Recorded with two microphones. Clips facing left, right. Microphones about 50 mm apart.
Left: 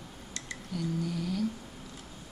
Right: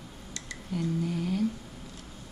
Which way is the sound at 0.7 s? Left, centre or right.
Right.